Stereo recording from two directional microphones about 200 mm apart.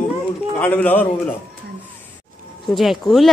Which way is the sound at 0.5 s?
10° left (ahead or behind).